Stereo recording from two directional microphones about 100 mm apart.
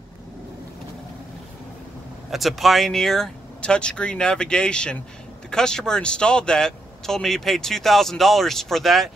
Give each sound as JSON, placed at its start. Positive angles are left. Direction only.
{"t": 2.3, "sound": "speech", "side_deg": 0}